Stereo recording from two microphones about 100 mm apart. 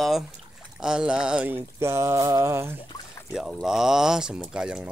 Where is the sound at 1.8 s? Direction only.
25° right (ahead or behind).